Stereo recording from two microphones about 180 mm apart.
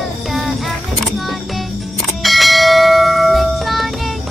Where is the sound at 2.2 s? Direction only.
Centre (ahead or behind).